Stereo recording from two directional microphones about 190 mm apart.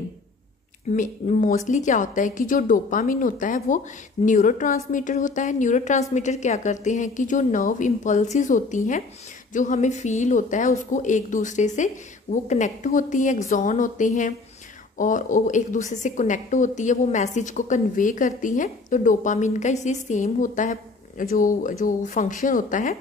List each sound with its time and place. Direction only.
0.9 s a woman's voice: 40° left (ahead or behind)